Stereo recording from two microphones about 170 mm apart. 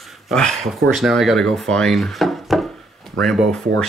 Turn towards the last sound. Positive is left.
turn(degrees=5)  # may be behind; listen again after turning